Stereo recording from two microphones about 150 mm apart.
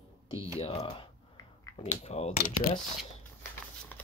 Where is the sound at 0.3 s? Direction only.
20° right (ahead or behind).